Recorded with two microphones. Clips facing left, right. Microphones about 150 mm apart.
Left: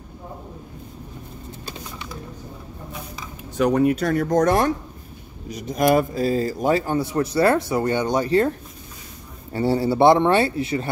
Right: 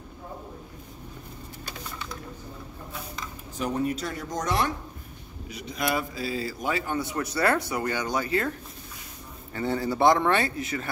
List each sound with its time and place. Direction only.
3.5 s a man's voice: 70° left (ahead or behind); by 10.9 s 30° left (ahead or behind)